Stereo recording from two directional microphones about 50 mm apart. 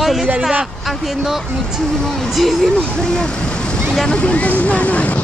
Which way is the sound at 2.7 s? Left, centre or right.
Centre.